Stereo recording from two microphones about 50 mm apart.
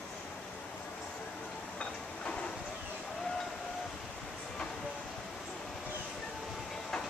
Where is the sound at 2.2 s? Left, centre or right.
Left.